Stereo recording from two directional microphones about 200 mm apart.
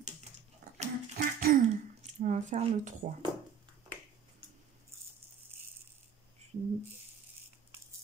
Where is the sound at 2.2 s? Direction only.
35° right (ahead or behind).